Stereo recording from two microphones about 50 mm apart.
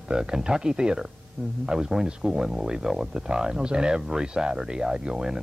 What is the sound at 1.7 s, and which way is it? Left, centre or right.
Speech, centre.